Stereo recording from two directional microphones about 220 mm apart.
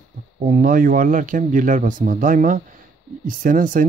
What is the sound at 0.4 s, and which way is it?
Speech, 35° right (ahead or behind).